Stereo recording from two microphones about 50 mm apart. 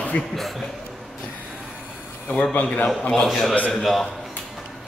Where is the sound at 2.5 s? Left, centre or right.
Left.